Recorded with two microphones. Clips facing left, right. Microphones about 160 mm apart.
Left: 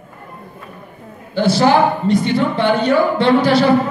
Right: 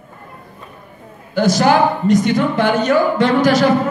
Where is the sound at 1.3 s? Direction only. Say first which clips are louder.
Even; 45° right (ahead or behind).